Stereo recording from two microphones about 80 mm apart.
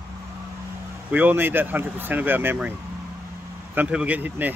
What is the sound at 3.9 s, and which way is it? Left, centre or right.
Speech, centre.